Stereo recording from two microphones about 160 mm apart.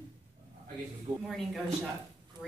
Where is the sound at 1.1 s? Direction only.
55° right (ahead or behind).